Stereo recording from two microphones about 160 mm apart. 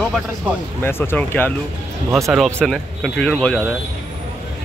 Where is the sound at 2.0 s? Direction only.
20° right (ahead or behind).